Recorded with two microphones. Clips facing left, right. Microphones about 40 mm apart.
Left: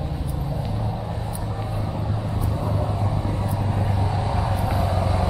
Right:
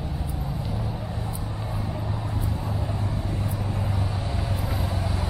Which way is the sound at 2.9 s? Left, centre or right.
Centre.